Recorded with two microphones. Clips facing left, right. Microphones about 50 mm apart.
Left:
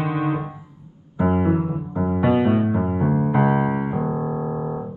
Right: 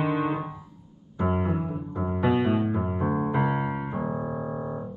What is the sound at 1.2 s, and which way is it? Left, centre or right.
Piano, centre.